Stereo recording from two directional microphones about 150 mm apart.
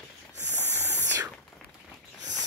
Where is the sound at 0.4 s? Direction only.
15° left (ahead or behind).